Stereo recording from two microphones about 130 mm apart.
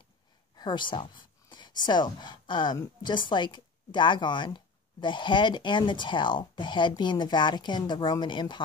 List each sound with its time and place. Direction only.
0.6 s speech: 35° left (ahead or behind)